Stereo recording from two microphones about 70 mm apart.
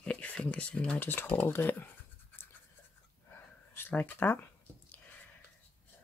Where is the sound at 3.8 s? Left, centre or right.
Left.